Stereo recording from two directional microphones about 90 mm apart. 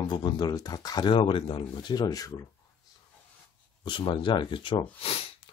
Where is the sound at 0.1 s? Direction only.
55° left (ahead or behind).